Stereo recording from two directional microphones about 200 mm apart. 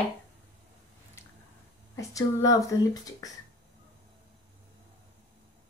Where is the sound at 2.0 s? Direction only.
15° left (ahead or behind).